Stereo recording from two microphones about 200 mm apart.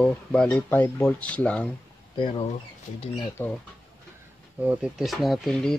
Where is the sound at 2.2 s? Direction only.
30° left (ahead or behind).